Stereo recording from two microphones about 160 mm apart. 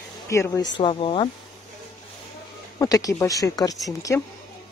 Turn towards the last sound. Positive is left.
turn(degrees=20)  # may be behind; listen again after turning